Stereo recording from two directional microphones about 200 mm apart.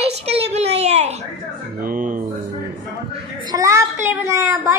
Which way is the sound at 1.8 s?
45° right (ahead or behind).